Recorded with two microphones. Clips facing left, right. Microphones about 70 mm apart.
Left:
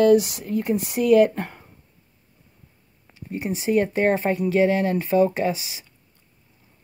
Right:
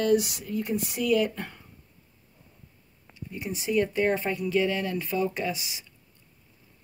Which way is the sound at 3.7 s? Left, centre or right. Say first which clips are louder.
Left 5 dB; left.